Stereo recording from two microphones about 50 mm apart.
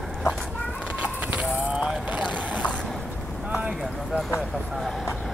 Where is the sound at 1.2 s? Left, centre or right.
Right.